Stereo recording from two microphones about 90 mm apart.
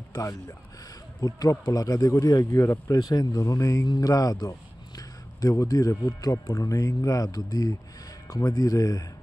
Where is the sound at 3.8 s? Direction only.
50° left (ahead or behind).